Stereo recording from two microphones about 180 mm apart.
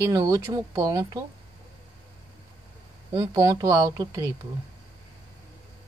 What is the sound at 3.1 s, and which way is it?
Speech, 20° right (ahead or behind).